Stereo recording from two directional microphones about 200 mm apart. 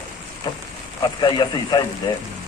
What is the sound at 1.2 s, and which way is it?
Speech, 20° left (ahead or behind).